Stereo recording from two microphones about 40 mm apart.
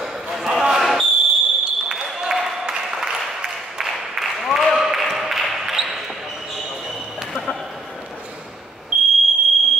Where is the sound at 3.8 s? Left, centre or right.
Centre.